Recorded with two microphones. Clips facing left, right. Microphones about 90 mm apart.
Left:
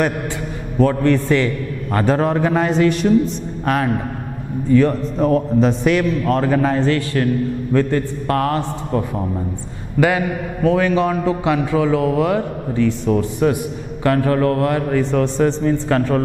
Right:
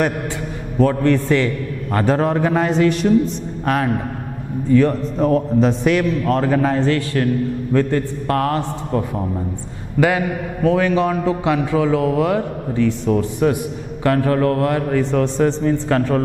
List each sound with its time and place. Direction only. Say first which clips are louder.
0.7 s a man's voice: even; 10° left (ahead or behind)